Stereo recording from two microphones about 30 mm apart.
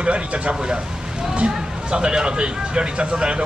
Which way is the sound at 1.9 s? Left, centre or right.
Right.